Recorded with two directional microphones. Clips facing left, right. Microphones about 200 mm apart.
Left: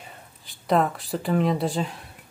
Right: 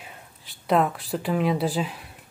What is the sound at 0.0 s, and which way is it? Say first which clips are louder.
Speech: even; centre (ahead or behind).